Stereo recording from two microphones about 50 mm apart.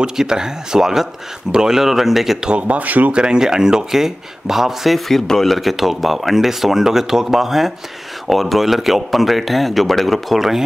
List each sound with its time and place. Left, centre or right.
0.0 s speech: centre
2.5 s speech: right
3.1 s speech: centre